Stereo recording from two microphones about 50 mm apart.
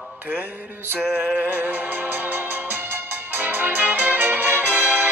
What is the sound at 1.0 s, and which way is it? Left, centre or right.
Music, centre.